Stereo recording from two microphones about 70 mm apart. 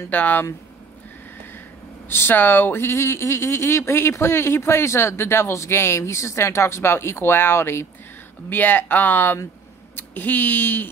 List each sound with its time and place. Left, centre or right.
0.1 s speech: left
2.0 s speech: left